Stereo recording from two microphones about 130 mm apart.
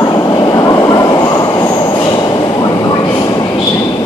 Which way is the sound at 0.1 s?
30° left (ahead or behind).